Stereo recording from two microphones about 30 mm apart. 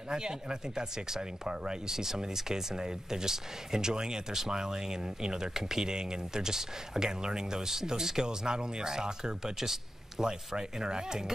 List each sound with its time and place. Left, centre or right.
0.1 s speech: right
1.9 s speech: centre